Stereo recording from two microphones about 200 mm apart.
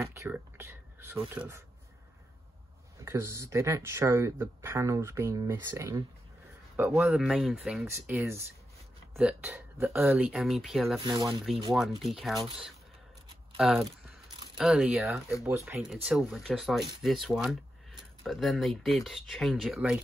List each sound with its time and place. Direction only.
0.0 s a sound: 15° right (ahead or behind)
3.1 s speech: 15° right (ahead or behind)
7.0 s speech: centre (ahead or behind)
11.0 s speech: 25° right (ahead or behind)
11.7 s speech: centre (ahead or behind)
13.6 s speech: centre (ahead or behind)